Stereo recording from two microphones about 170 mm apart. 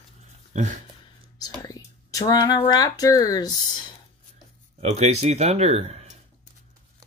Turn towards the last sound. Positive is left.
turn(degrees=-40)  # may be behind; listen again after turning